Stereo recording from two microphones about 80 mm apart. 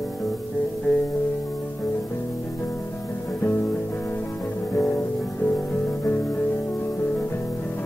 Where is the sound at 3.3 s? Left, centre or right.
Left.